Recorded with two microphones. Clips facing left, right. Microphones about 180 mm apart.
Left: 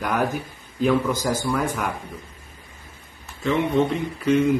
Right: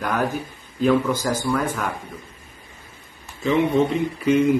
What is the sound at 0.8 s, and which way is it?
Speech, 10° left (ahead or behind).